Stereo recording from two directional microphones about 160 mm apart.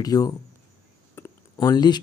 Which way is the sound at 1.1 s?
20° left (ahead or behind).